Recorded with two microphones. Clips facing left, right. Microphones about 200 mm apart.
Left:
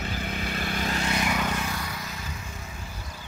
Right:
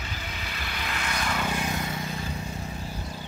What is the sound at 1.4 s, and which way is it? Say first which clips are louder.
Vehicle: right 1 dB; 15° right (ahead or behind).